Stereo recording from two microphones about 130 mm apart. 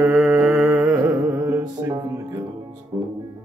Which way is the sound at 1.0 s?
25° right (ahead or behind).